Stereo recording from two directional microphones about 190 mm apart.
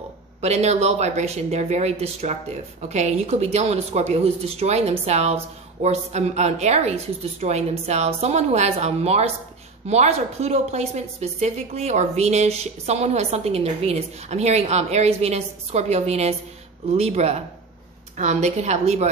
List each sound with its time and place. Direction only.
0.4 s speech: 35° right (ahead or behind)